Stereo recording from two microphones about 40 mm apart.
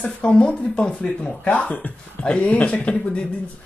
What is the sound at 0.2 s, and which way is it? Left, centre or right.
Speech, left.